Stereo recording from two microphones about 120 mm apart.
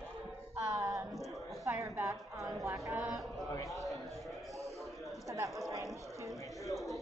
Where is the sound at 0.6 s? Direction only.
30° right (ahead or behind).